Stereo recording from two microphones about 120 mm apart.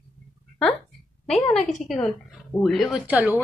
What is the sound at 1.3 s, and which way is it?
A woman's voice, 5° left (ahead or behind).